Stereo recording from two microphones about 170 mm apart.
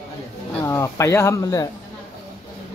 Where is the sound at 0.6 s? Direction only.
15° left (ahead or behind).